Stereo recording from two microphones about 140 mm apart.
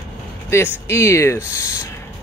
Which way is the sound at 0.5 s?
15° left (ahead or behind).